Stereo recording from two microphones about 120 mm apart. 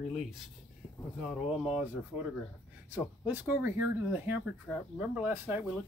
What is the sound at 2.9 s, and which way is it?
Speech, 15° right (ahead or behind).